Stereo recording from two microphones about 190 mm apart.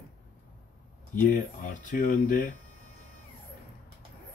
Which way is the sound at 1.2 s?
50° left (ahead or behind).